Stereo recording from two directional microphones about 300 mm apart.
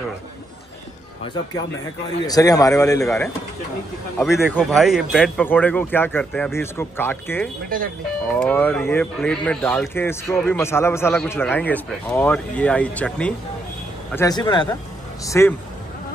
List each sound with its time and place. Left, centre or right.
2.2 s speech: centre
4.5 s speech: centre
7.7 s speech: right
8.3 s speech: centre